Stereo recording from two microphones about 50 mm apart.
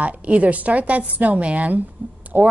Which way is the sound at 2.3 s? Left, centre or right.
Right.